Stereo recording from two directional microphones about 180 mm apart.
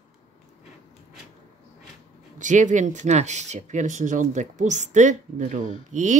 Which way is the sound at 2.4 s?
45° right (ahead or behind).